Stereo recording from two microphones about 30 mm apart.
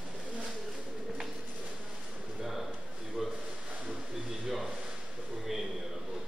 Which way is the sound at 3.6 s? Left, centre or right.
Right.